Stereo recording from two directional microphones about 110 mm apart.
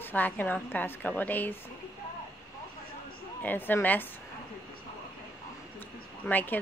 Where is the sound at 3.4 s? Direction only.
15° left (ahead or behind).